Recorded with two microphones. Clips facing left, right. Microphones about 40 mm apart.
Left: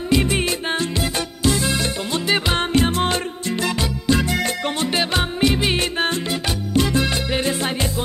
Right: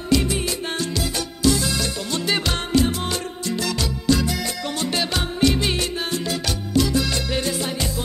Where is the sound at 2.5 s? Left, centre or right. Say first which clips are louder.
Left 2 dB; left.